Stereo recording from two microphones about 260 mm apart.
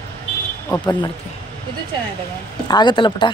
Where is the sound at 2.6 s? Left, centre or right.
Centre.